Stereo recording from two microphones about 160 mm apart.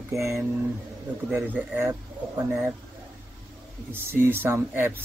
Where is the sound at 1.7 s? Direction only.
15° right (ahead or behind).